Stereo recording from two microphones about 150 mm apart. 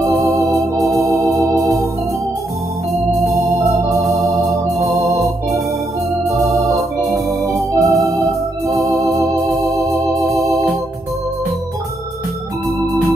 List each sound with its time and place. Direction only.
0.3 s organ: 15° right (ahead or behind)
7.8 s organ: 20° right (ahead or behind)